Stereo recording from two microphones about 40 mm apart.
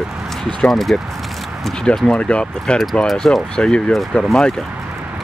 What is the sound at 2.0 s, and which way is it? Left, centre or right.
Speech, left.